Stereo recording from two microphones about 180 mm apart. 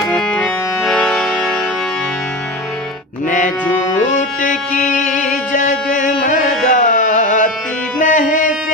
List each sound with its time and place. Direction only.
0.1 s accordion: 5° left (ahead or behind)
3.3 s music: 45° left (ahead or behind)
3.6 s music: 10° left (ahead or behind)
4.1 s music: 45° left (ahead or behind)